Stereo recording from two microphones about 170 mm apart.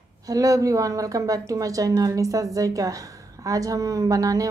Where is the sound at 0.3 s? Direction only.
20° right (ahead or behind).